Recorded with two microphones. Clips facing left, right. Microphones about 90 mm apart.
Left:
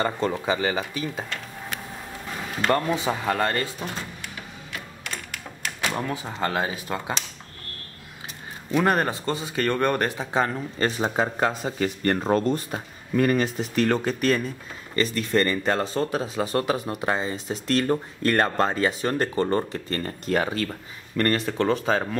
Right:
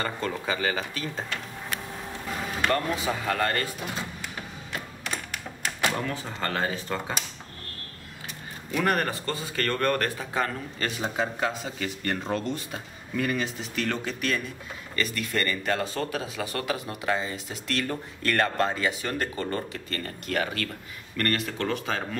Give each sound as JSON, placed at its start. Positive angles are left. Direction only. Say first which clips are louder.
{"t": 0.0, "sound": "speech", "louder": "left 5 dB", "side_deg": 25}
{"t": 2.7, "sound": "speech", "louder": "left 6 dB", "side_deg": 25}
{"t": 6.1, "sound": "speech", "louder": "left 4 dB", "side_deg": 15}
{"t": 8.7, "sound": "speech", "louder": "left 4 dB", "side_deg": 25}